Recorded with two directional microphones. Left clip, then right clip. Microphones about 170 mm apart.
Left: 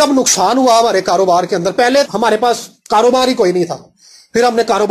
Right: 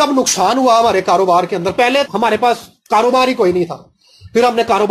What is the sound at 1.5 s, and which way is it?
Speech, 15° left (ahead or behind).